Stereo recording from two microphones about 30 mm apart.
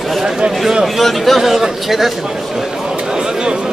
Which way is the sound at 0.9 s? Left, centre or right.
Centre.